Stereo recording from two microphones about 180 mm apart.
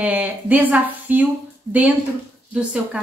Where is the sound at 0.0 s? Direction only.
10° right (ahead or behind).